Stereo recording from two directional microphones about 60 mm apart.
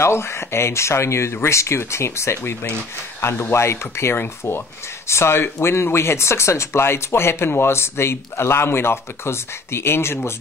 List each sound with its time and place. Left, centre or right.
0.0 s speech: left